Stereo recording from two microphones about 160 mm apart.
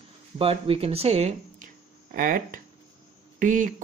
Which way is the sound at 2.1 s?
60° right (ahead or behind).